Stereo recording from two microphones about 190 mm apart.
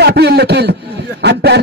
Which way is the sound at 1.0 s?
60° right (ahead or behind).